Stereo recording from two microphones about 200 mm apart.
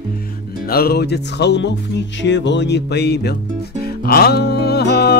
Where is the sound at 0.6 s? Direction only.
50° left (ahead or behind).